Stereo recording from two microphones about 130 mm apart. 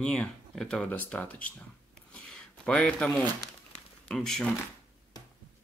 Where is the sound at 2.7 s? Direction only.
10° left (ahead or behind).